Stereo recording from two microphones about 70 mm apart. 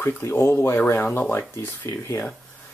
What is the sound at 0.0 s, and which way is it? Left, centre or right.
Speech, left.